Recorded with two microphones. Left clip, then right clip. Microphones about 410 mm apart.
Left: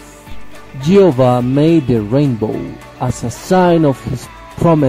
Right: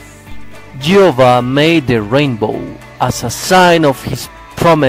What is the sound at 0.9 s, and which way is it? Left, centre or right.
A man's voice, right.